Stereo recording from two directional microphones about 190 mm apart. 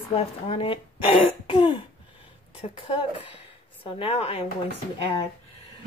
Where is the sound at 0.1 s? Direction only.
30° left (ahead or behind).